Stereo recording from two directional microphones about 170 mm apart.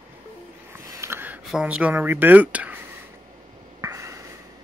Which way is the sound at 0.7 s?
15° right (ahead or behind).